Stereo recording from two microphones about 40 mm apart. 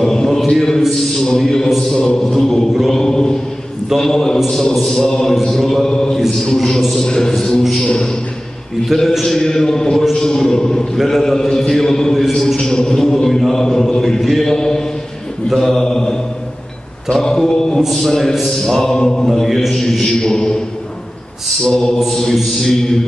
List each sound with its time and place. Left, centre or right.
0.0 s a man's voice: centre
8.8 s a man's voice: centre
18.9 s a man's voice: centre
19.2 s mantra: centre
19.9 s a man's voice: centre
20.2 s a man's voice: centre
21.6 s a man's voice: centre